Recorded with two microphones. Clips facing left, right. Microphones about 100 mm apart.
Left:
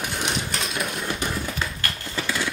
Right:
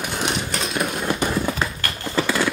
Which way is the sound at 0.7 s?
35° right (ahead or behind).